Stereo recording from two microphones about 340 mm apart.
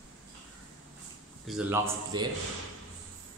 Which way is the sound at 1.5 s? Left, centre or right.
Centre.